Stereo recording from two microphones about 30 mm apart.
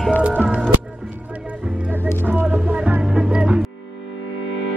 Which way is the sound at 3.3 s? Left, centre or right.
Right.